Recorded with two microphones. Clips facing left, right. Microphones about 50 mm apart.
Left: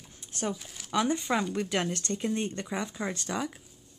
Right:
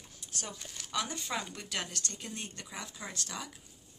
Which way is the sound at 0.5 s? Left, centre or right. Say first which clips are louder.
Left 1 dB; centre.